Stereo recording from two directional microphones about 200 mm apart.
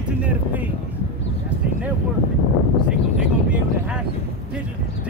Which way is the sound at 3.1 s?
5° right (ahead or behind).